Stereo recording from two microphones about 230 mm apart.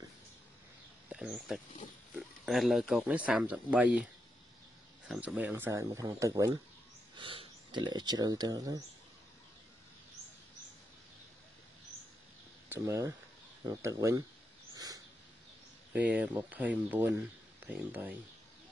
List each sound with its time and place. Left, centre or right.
1.0 s speech: centre
12.6 s speech: centre
15.9 s speech: centre